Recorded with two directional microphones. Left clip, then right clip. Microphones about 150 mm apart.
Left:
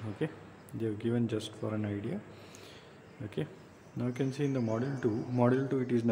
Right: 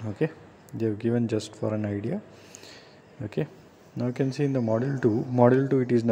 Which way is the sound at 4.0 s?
30° right (ahead or behind).